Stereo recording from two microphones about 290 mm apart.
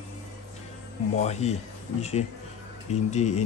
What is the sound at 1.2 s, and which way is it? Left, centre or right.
Speech, left.